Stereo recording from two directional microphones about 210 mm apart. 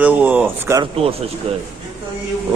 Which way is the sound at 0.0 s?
10° right (ahead or behind).